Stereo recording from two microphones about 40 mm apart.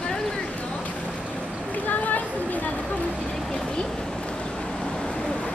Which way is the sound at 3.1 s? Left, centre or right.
Centre.